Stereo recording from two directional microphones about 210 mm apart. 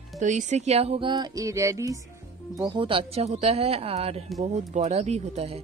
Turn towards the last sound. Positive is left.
turn(degrees=-30)  # may be behind; listen again after turning